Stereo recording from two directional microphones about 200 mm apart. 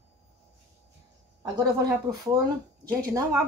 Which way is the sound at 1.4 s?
20° right (ahead or behind).